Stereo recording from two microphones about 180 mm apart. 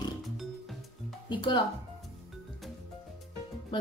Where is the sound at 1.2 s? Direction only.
25° left (ahead or behind).